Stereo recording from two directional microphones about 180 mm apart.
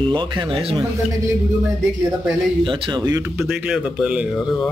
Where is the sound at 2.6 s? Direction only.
30° right (ahead or behind).